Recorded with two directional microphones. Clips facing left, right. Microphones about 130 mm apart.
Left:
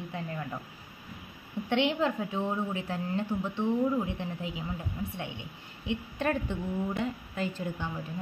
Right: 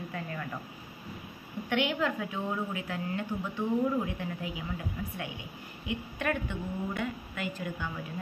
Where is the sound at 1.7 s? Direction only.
30° left (ahead or behind).